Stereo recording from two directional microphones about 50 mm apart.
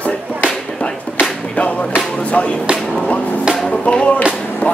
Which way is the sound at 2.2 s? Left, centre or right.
Left.